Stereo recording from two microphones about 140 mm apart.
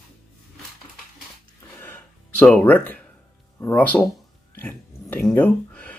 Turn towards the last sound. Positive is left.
turn(degrees=10)  # may be behind; listen again after turning